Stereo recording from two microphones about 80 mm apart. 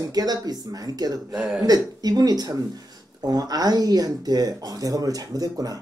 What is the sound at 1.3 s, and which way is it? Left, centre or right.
Speech, centre.